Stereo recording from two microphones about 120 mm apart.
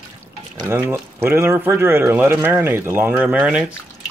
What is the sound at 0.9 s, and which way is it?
Speech, 20° right (ahead or behind).